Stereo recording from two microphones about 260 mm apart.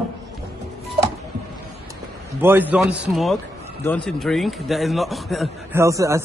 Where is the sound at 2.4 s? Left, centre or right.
Centre.